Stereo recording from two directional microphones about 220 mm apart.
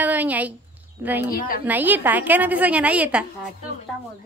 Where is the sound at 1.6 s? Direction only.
10° right (ahead or behind).